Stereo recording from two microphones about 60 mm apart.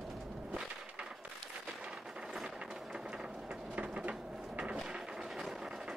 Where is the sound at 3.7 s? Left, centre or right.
Right.